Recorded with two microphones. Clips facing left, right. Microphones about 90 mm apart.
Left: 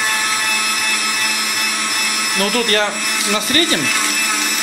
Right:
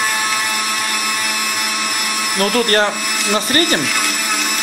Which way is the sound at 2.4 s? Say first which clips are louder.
Right 2 dB; 40° right (ahead or behind).